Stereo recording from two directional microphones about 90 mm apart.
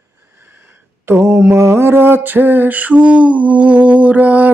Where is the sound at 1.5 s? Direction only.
30° right (ahead or behind).